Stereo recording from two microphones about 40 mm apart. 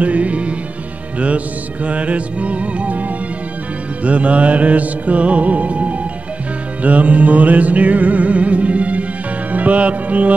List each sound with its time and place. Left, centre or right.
0.0 s music: right